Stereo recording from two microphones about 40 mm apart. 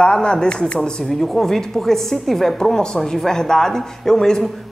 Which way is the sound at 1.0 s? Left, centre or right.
Centre.